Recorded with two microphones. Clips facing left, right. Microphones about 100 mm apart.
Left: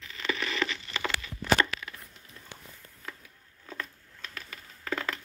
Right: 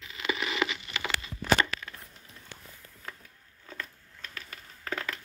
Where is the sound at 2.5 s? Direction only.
15° left (ahead or behind).